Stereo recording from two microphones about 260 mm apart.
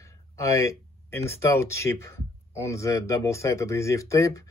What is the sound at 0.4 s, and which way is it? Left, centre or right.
Speech, centre.